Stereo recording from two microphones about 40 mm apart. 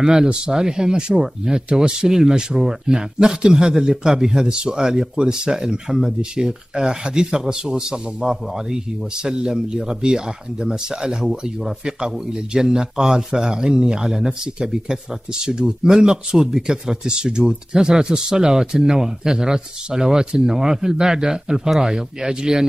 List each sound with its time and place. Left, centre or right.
0.0 s speech: centre